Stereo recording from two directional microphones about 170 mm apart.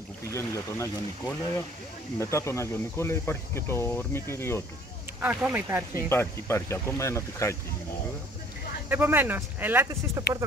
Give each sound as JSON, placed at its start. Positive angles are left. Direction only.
{"t": 0.3, "sound": "speech", "side_deg": 15}
{"t": 5.2, "sound": "speech", "side_deg": -10}
{"t": 6.0, "sound": "speech", "side_deg": 15}
{"t": 8.8, "sound": "speech", "side_deg": -10}